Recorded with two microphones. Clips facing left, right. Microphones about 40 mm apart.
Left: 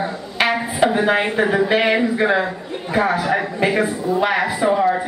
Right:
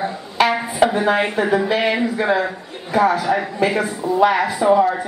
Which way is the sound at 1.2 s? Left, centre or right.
Centre.